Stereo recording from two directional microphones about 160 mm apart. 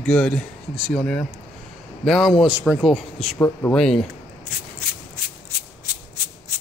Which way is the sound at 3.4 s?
15° left (ahead or behind).